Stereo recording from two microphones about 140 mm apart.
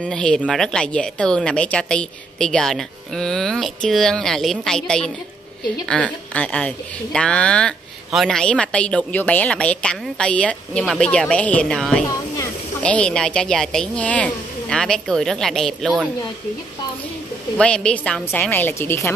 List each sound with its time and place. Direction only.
0.0 s a woman's voice: 5° left (ahead or behind)
17.6 s a woman's voice: 5° left (ahead or behind)